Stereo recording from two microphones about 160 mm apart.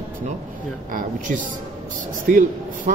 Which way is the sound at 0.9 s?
60° right (ahead or behind).